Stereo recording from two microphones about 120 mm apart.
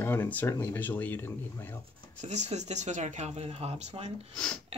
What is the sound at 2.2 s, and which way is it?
Speech, 70° right (ahead or behind).